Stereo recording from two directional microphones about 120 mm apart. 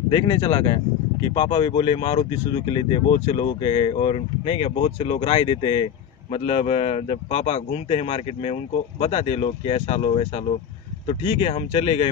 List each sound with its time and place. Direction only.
0.1 s speech: 40° left (ahead or behind)
6.3 s speech: 60° left (ahead or behind)